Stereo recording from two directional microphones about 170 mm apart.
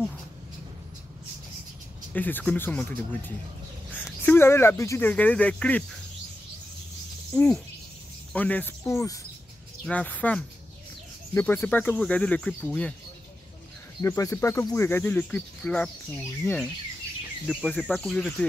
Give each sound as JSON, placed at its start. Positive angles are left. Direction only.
{"t": 2.1, "sound": "speech", "side_deg": 10}
{"t": 7.3, "sound": "speech", "side_deg": 5}
{"t": 14.0, "sound": "speech", "side_deg": 20}
{"t": 17.5, "sound": "speech", "side_deg": 0}